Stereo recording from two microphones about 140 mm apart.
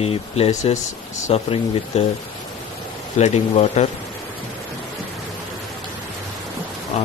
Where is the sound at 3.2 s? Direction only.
55° left (ahead or behind).